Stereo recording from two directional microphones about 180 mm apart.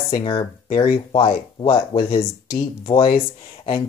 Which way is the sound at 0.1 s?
30° left (ahead or behind).